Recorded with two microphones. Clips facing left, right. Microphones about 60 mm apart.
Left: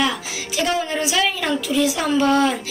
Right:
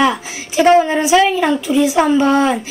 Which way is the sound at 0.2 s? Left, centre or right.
Right.